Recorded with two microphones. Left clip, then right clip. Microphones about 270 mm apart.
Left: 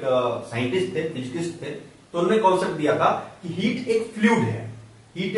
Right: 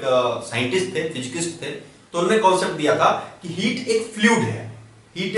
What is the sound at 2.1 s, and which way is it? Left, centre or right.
A man's voice, centre.